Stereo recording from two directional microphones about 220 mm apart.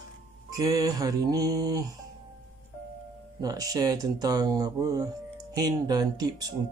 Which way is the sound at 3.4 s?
15° right (ahead or behind).